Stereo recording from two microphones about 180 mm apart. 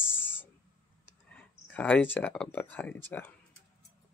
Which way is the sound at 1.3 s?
5° left (ahead or behind).